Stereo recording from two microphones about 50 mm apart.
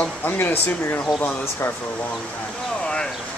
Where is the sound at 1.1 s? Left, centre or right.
Left.